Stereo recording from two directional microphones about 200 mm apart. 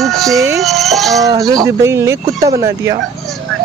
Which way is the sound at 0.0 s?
Centre (ahead or behind).